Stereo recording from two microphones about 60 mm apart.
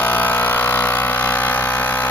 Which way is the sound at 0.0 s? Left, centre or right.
Left.